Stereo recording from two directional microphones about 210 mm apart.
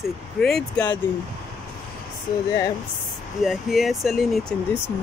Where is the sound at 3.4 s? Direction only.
Centre (ahead or behind).